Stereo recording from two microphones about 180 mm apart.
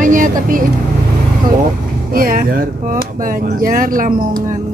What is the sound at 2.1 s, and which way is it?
Speech, 55° right (ahead or behind).